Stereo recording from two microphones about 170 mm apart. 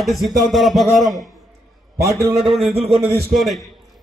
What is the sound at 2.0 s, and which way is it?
Speech, 15° right (ahead or behind).